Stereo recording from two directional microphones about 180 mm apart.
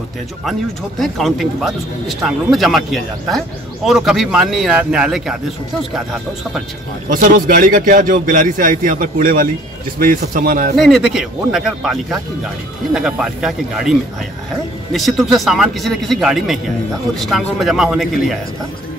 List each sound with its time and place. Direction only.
0.5 s a man's voice: centre (ahead or behind)
7.1 s speech: 50° right (ahead or behind)
10.8 s a man's voice: centre (ahead or behind)